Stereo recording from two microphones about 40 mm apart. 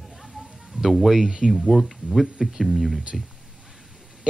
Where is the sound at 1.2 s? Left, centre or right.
Centre.